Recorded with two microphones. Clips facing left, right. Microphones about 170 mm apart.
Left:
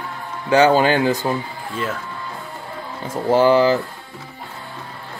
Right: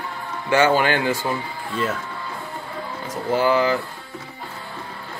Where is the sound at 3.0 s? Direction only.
30° left (ahead or behind).